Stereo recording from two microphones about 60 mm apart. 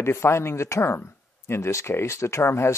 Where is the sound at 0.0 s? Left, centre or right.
Left.